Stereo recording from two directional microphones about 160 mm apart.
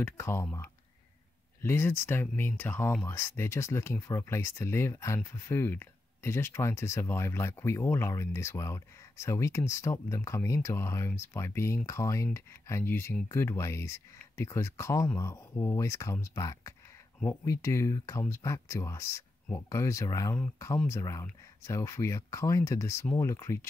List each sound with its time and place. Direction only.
0.0 s speech: 15° left (ahead or behind)